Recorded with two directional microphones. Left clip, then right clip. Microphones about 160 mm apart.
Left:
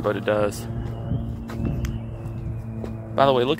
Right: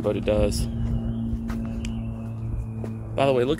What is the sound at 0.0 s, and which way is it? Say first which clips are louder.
Speech: left 1 dB; 35° right (ahead or behind).